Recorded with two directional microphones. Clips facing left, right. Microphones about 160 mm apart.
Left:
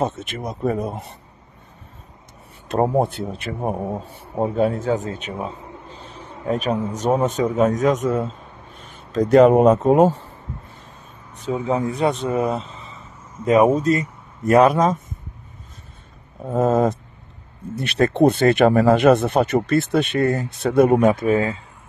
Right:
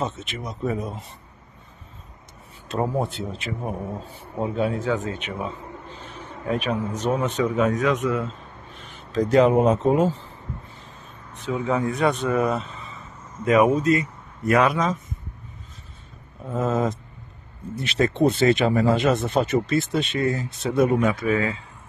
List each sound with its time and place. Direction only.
0.0 s speech: 55° left (ahead or behind)
3.0 s speech: 55° left (ahead or behind); by 8.3 s 40° left (ahead or behind)
9.3 s speech: 55° left (ahead or behind)
11.5 s speech: 30° left (ahead or behind)
13.8 s speech: 40° left (ahead or behind)
16.4 s speech: 50° left (ahead or behind)